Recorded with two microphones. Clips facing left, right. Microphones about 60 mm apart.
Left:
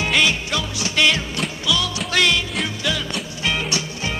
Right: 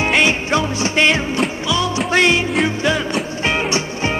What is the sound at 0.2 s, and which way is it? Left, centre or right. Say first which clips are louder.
Music: right 5 dB; right.